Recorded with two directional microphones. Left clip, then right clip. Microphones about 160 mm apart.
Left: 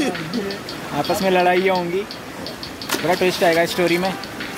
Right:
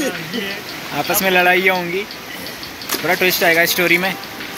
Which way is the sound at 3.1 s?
5° left (ahead or behind).